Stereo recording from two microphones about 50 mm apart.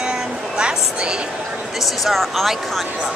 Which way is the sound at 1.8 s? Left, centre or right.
Centre.